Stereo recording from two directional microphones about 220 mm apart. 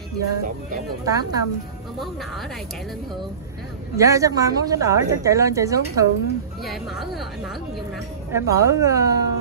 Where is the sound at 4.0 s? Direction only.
15° right (ahead or behind).